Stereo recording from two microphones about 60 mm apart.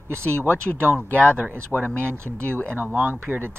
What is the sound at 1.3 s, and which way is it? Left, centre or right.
A man's voice, right.